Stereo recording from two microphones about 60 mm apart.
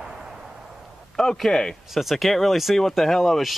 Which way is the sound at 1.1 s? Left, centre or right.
Centre.